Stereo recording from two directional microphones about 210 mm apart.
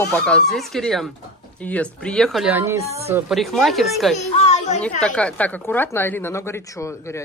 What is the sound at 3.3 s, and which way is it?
Speech, centre (ahead or behind).